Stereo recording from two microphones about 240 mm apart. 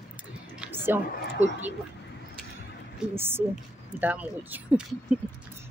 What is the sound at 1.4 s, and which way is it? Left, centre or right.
Speech, right.